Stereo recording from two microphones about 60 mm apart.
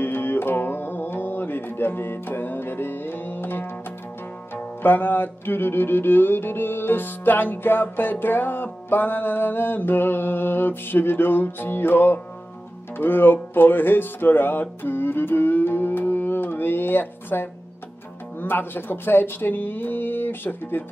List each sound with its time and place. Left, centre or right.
0.0 s music: left